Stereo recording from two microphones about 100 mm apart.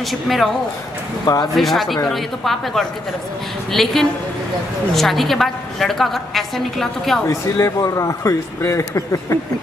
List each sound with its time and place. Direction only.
0.0 s a woman's voice: centre (ahead or behind)
1.2 s speech: 40° left (ahead or behind)
1.6 s a woman's voice: centre (ahead or behind)
7.2 s a man's voice: 30° left (ahead or behind)